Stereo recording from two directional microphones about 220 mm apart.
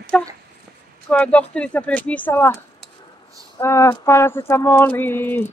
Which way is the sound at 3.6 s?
10° left (ahead or behind).